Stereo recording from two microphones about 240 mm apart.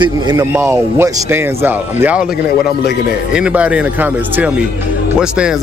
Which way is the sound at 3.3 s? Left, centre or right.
Centre.